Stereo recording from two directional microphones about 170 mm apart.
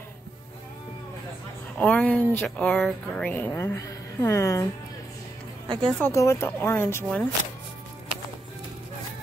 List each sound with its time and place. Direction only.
1.8 s speech: 10° left (ahead or behind)
5.7 s speech: 30° right (ahead or behind)
5.9 s speech: 15° left (ahead or behind)